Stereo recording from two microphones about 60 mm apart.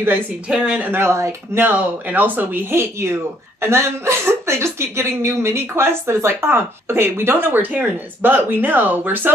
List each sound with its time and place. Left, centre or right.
0.5 s speech: right
0.9 s a woman's voice: right
1.6 s a woman's voice: right